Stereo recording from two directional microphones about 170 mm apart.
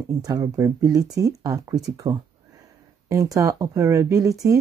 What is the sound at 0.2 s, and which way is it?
Speech, 20° right (ahead or behind).